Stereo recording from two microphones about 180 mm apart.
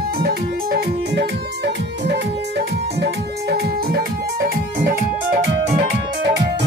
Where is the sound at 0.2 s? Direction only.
60° right (ahead or behind).